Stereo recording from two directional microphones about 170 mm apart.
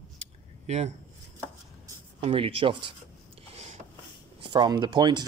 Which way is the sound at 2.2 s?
30° right (ahead or behind).